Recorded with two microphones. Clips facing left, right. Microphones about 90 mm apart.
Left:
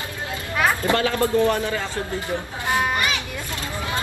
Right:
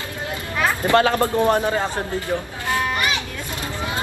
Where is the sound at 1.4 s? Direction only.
30° right (ahead or behind).